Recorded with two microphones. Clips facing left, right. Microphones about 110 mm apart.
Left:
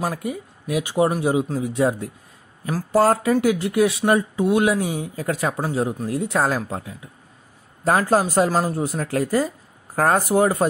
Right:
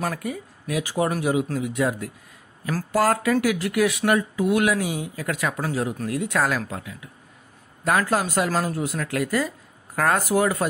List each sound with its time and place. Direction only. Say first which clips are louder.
0.0 s speech: left 2 dB; 25° left (ahead or behind)